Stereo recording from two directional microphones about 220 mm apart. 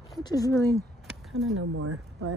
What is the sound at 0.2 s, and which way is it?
Speech, 15° left (ahead or behind).